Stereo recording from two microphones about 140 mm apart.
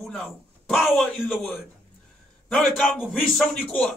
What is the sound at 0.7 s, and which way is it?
Speech, centre (ahead or behind).